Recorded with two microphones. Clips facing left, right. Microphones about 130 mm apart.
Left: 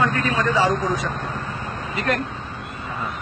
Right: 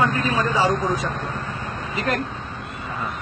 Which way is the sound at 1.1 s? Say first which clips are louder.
Even; centre (ahead or behind).